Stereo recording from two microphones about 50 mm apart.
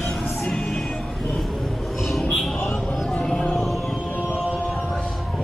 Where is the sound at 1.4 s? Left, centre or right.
Centre.